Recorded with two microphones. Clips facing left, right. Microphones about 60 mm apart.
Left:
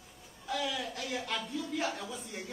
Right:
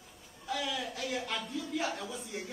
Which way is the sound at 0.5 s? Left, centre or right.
Centre.